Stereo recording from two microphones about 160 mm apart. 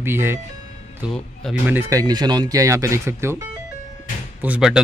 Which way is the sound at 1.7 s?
15° right (ahead or behind).